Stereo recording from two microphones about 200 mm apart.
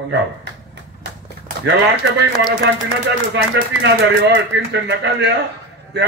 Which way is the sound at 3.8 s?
60° right (ahead or behind).